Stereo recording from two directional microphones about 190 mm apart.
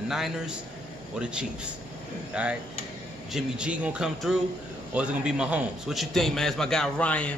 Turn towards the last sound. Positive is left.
turn(degrees=5)  # may be behind; listen again after turning